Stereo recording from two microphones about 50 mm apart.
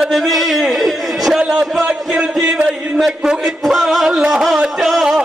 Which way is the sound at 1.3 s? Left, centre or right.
Centre.